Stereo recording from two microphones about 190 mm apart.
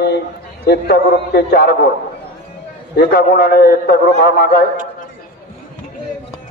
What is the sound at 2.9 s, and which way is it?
A man's voice, 55° left (ahead or behind).